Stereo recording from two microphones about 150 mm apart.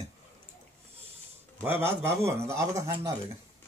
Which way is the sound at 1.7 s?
15° right (ahead or behind).